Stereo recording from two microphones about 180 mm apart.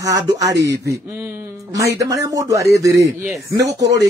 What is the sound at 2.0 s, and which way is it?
Speech, 20° right (ahead or behind).